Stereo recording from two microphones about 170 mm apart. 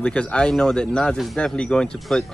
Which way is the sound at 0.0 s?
5° left (ahead or behind).